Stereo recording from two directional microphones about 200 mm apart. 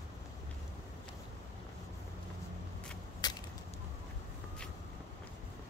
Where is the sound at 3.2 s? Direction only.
20° left (ahead or behind).